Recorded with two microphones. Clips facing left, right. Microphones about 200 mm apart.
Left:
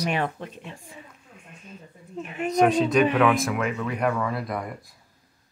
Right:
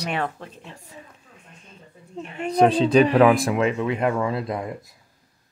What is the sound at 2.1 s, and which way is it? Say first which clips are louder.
Speech: even; 25° right (ahead or behind).